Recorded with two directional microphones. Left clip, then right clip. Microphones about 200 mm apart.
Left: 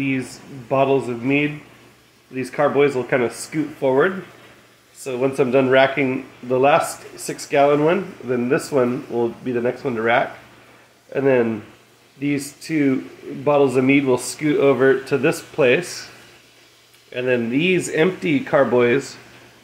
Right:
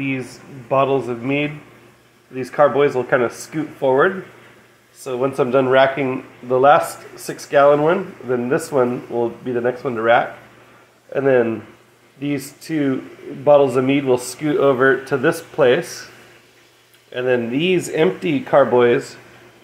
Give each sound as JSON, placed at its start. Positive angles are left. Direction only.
{"t": 0.7, "sound": "speech", "side_deg": 15}
{"t": 17.1, "sound": "speech", "side_deg": 15}